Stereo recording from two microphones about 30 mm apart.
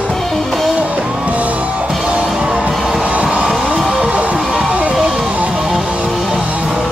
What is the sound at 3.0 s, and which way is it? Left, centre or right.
Vehicle, right.